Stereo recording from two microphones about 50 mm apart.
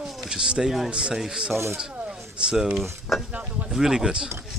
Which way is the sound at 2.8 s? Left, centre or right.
Centre.